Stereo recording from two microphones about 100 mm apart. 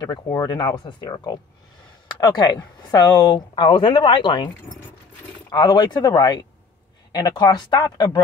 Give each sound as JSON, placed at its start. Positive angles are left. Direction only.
{"t": 0.5, "sound": "a woman's voice", "side_deg": 45}
{"t": 5.5, "sound": "a woman's voice", "side_deg": 45}